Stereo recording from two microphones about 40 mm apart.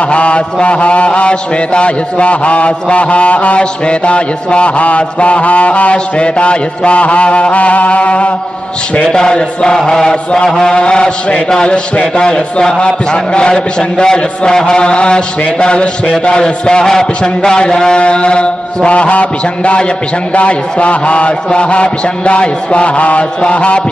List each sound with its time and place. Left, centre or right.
0.1 s mantra: left
9.1 s a man's voice: left
20.3 s mantra: left